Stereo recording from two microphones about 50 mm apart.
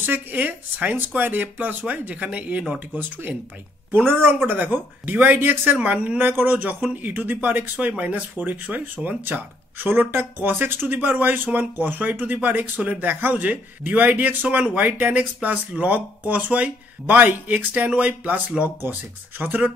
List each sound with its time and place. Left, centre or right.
0.0 s a man's voice: right
3.9 s a man's voice: right
5.8 s speech: right
6.2 s a man's voice: right